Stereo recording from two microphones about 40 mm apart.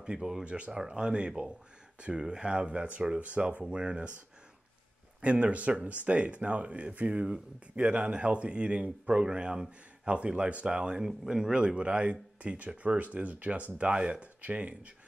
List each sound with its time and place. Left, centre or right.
0.0 s speech: centre
0.5 s speech: right
5.2 s speech: right
13.7 s speech: right